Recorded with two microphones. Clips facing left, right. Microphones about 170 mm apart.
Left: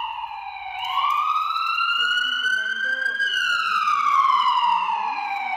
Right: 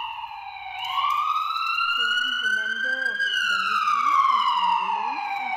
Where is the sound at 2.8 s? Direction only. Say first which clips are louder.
Even; 15° right (ahead or behind).